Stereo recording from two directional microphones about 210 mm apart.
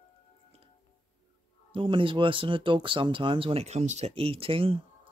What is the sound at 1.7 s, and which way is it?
Speech, 25° right (ahead or behind).